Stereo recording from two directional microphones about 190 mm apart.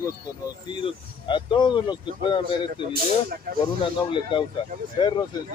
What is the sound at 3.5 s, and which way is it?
Speech, 50° right (ahead or behind).